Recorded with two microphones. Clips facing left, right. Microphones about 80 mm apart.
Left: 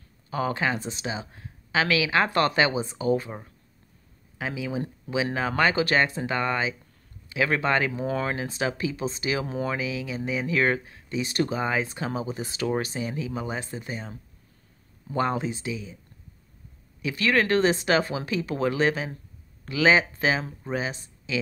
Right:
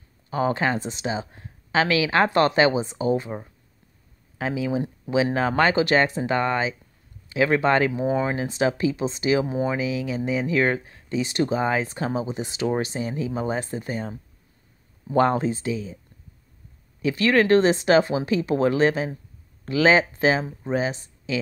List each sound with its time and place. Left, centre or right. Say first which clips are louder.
0.3 s speech: right 4 dB; right
4.4 s speech: right 5 dB; right
15.1 s speech: right 6 dB; right
17.0 s speech: right 4 dB; right